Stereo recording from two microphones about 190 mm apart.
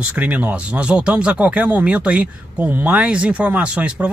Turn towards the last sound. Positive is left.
turn(degrees=-5)  # may be behind; listen again after turning